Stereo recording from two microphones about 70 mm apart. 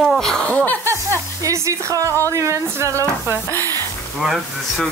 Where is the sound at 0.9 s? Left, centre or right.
Right.